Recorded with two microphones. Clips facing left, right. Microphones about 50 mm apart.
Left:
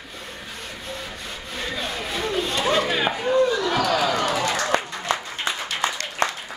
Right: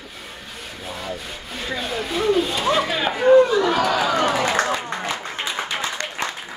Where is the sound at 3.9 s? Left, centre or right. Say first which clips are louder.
Right 2 dB; centre.